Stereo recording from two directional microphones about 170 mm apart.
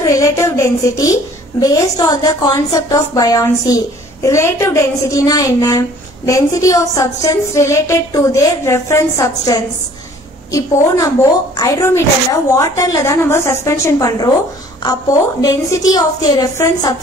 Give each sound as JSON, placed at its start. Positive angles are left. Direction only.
{"t": 0.0, "sound": "a woman's voice", "side_deg": 15}